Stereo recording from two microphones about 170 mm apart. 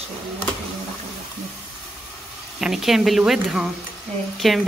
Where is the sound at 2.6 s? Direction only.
Centre (ahead or behind).